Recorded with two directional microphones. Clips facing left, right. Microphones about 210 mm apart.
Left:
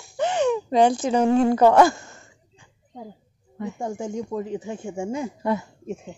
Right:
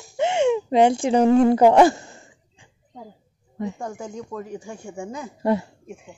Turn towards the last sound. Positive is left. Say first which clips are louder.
# right 3 dB
turn(degrees=-35)  # may be behind; listen again after turning